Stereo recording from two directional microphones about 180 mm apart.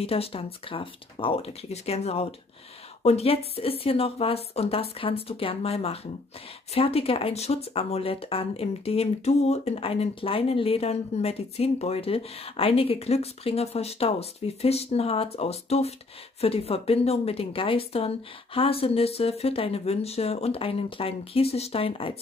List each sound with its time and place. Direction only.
0.0 s speech: 35° left (ahead or behind)